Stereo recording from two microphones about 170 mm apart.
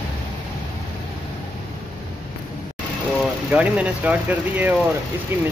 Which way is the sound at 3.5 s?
10° right (ahead or behind).